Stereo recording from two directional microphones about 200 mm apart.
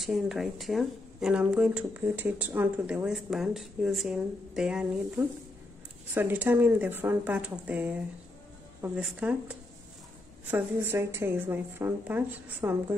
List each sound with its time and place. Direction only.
0.0 s a woman's voice: centre (ahead or behind)